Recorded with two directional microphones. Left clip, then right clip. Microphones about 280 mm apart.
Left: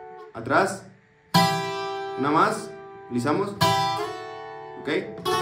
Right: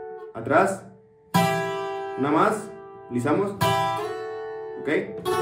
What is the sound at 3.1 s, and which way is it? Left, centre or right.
Speech, centre.